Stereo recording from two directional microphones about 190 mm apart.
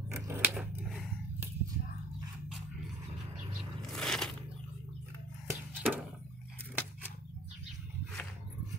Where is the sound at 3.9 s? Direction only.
5° left (ahead or behind).